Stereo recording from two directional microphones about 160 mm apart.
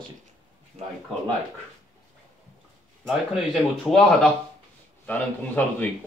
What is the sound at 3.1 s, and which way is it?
Speech, centre (ahead or behind).